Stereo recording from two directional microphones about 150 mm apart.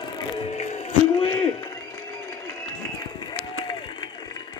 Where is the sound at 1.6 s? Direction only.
25° left (ahead or behind).